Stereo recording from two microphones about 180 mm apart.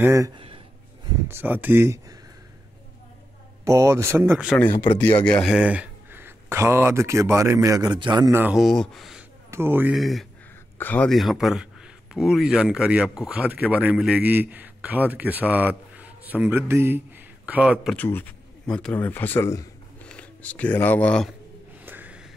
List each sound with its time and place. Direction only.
0.0 s speech: 15° right (ahead or behind)
1.3 s speech: 10° right (ahead or behind)
3.6 s speech: 15° right (ahead or behind)
4.6 s speech: 10° left (ahead or behind); by 8.3 s 25° right (ahead or behind)
8.3 s speech: 10° right (ahead or behind)
8.5 s a man's voice: centre (ahead or behind)
9.5 s speech: 10° right (ahead or behind)
9.9 s a man's voice: centre (ahead or behind)
17.9 s speech: 10° left (ahead or behind)
21.8 s music: 10° right (ahead or behind)